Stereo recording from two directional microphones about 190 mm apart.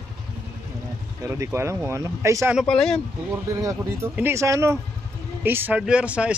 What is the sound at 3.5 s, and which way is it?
Speech, 15° right (ahead or behind).